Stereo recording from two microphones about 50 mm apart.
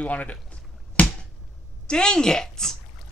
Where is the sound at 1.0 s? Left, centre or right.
Left.